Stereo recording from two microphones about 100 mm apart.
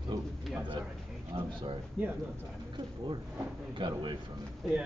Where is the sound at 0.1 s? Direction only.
40° right (ahead or behind).